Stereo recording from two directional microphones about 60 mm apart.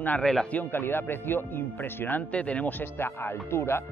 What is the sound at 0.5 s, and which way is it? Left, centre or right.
Speech, left.